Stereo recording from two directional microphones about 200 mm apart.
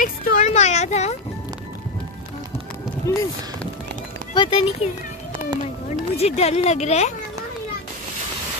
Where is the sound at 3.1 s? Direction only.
15° left (ahead or behind).